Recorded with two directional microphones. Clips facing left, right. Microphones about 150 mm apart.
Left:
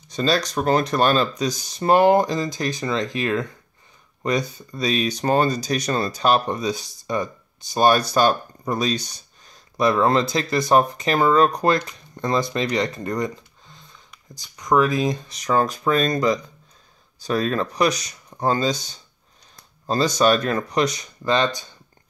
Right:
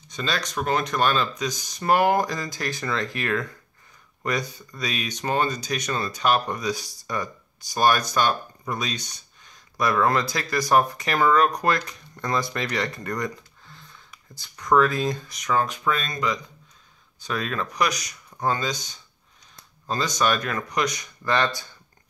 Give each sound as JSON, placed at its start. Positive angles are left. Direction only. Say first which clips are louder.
{"t": 0.1, "sound": "speech", "louder": "left 7 dB", "side_deg": 35}
{"t": 15.3, "sound": "speech", "louder": "left 4 dB", "side_deg": 35}